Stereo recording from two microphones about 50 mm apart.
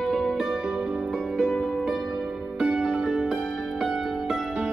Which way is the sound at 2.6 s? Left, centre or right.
Right.